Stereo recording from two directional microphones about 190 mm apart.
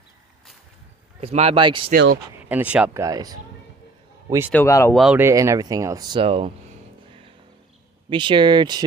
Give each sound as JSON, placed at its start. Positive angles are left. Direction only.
{"t": 1.2, "sound": "speech", "side_deg": -35}
{"t": 1.9, "sound": "speech", "side_deg": -60}
{"t": 2.4, "sound": "speech", "side_deg": -10}
{"t": 4.5, "sound": "speech", "side_deg": 10}
{"t": 4.9, "sound": "speech", "side_deg": -5}
{"t": 8.1, "sound": "speech", "side_deg": -25}